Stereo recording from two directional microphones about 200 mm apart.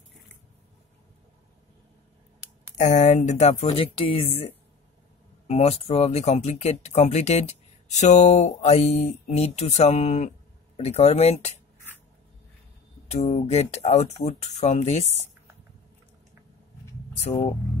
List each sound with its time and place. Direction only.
2.8 s speech: 40° left (ahead or behind)
13.1 s speech: 35° left (ahead or behind)